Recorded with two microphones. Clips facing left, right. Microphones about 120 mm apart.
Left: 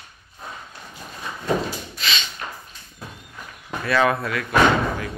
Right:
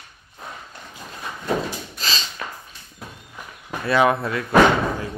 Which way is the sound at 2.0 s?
35° right (ahead or behind).